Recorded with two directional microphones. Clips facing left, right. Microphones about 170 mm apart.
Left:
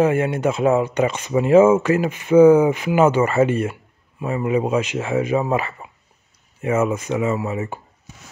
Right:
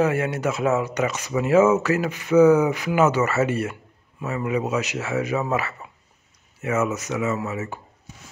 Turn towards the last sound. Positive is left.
turn(degrees=30)  # may be behind; listen again after turning